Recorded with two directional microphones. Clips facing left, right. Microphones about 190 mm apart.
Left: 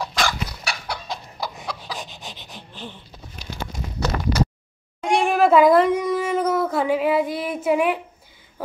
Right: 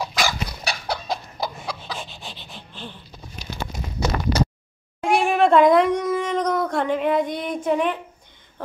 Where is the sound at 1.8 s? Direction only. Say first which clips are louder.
Even; 15° left (ahead or behind).